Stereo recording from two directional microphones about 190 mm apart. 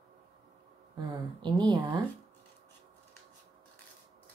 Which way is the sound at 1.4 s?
25° right (ahead or behind).